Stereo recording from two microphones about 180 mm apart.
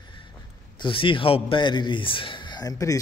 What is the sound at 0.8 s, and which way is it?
A man's voice, 30° left (ahead or behind).